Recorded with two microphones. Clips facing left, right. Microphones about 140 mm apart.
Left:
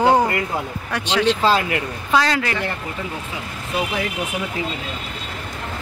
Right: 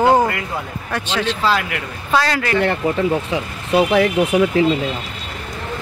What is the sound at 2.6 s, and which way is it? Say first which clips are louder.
Speech: right 10 dB; 75° right (ahead or behind).